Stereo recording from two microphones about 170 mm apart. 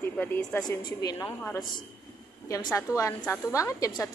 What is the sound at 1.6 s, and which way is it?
Speech, 25° left (ahead or behind).